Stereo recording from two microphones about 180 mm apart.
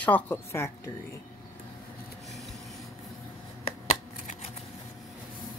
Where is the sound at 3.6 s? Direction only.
35° left (ahead or behind).